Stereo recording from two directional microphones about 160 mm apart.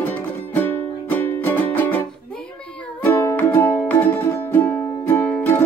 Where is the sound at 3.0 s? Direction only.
10° left (ahead or behind).